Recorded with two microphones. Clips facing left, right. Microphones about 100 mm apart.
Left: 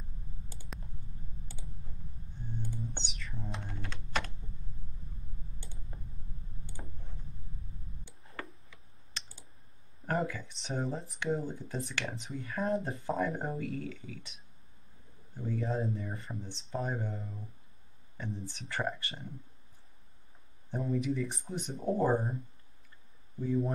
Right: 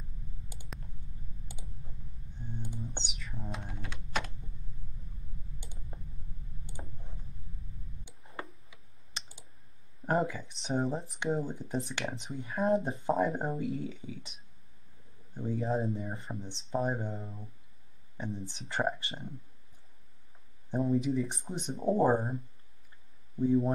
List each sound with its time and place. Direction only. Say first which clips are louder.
3.2 s computer keyboard: even; 5° right (ahead or behind)
3.8 s typing: even; 5° right (ahead or behind)
5.6 s clicking: even; 15° right (ahead or behind)
8.6 s tick-tock: even; 15° right (ahead or behind)
10.0 s speech: right 3 dB; 20° right (ahead or behind)
12.4 s speech: right 4 dB; 20° right (ahead or behind)
15.3 s speech: right 2 dB; 20° right (ahead or behind)
20.7 s speech: right 4 dB; 25° right (ahead or behind)
23.4 s speech: right 5 dB; 25° right (ahead or behind)